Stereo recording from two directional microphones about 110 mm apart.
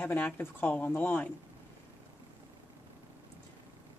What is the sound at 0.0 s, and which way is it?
Speech, 15° left (ahead or behind).